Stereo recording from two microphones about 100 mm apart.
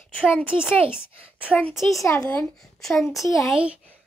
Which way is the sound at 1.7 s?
Centre (ahead or behind).